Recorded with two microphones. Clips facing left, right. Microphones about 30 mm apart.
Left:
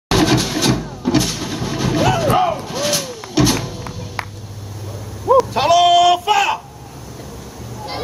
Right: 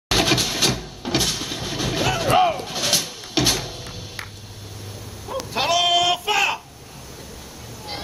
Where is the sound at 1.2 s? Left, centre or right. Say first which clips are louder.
Left 3 dB; centre.